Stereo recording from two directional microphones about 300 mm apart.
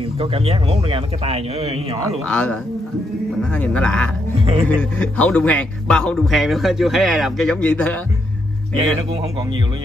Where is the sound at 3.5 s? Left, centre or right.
Centre.